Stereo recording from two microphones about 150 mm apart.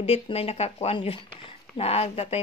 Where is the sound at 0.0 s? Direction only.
40° left (ahead or behind).